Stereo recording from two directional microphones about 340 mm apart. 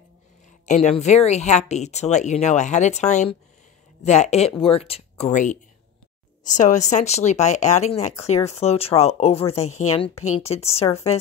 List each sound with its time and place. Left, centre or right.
0.7 s speech: centre